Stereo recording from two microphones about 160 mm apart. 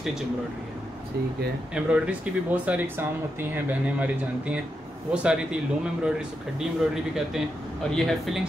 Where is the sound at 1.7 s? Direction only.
10° right (ahead or behind).